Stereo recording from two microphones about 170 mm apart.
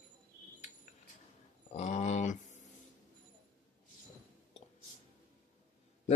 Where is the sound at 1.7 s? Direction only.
40° left (ahead or behind).